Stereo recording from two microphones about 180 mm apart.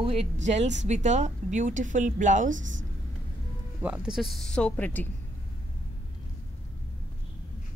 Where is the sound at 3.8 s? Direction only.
10° right (ahead or behind); by 5.1 s 10° left (ahead or behind).